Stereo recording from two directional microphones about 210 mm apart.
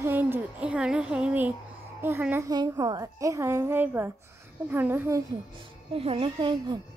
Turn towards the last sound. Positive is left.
turn(degrees=-20)  # may be behind; listen again after turning